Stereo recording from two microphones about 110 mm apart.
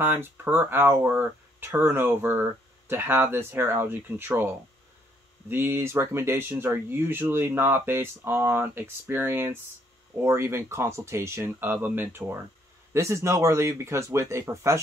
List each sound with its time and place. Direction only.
0.0 s speech: 20° right (ahead or behind)
5.5 s speech: 20° right (ahead or behind)